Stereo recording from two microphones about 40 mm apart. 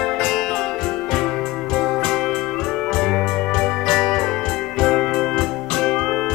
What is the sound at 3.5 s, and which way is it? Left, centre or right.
Music, centre.